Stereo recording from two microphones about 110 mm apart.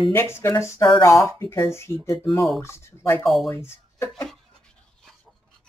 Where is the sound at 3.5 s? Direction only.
20° left (ahead or behind).